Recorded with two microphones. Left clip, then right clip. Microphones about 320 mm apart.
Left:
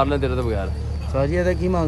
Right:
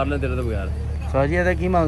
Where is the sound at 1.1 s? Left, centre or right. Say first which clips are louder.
Right 1 dB; centre.